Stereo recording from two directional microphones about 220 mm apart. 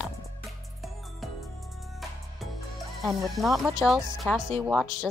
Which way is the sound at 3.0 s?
Centre (ahead or behind).